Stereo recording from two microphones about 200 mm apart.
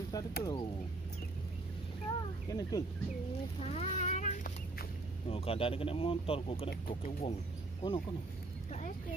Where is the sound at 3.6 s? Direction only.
35° left (ahead or behind).